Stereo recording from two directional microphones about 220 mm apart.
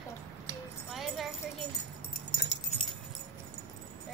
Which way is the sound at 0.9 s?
Centre (ahead or behind).